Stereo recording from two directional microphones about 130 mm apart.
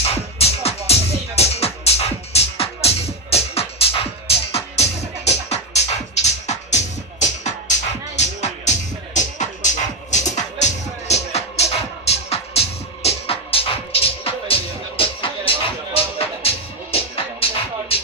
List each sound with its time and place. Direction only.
0.1 s music: 50° left (ahead or behind)